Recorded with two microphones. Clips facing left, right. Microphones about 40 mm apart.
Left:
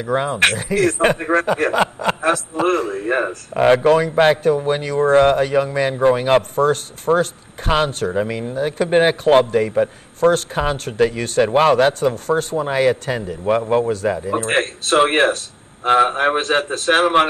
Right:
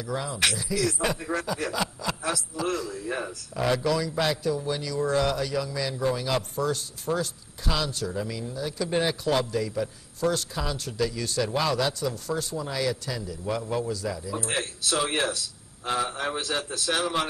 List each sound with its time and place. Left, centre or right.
0.0 s speech: left